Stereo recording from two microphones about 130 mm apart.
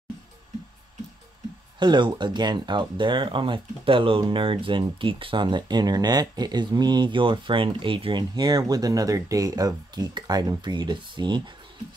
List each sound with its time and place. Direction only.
1.8 s speech: 35° right (ahead or behind)